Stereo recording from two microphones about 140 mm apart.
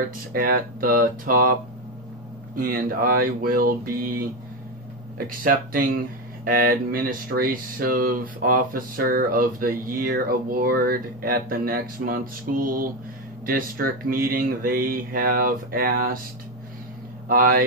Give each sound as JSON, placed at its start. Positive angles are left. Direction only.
{"t": 0.3, "sound": "speech", "side_deg": -90}
{"t": 2.5, "sound": "speech", "side_deg": -90}
{"t": 17.3, "sound": "speech", "side_deg": -90}